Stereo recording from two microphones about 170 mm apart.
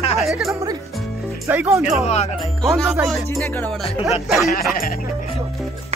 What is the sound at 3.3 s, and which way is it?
Music, 15° left (ahead or behind).